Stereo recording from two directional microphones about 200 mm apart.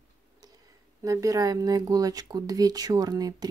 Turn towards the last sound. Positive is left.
turn(degrees=-20)  # may be behind; listen again after turning